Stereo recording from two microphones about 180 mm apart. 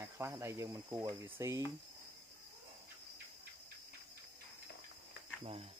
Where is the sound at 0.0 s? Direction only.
15° right (ahead or behind).